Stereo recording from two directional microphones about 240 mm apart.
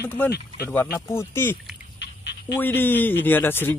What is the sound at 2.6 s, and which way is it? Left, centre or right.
Speech, centre.